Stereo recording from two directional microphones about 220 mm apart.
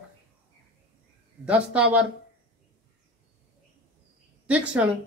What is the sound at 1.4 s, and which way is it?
Speech, 5° right (ahead or behind).